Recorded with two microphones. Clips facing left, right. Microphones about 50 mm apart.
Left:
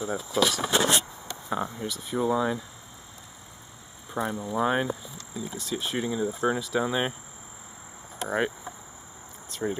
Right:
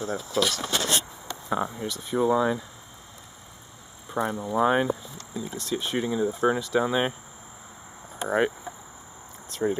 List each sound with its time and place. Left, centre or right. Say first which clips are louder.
0.0 s speech: even; centre
0.7 s speech: left 4 dB; centre
1.5 s speech: right 2 dB; centre
4.1 s speech: right 2 dB; centre
8.3 s speech: right 4 dB; centre